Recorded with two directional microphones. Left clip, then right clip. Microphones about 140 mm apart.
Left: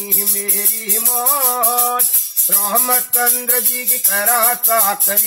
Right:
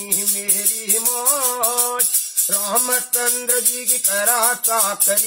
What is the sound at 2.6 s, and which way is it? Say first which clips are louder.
Music: left 4 dB; 5° right (ahead or behind).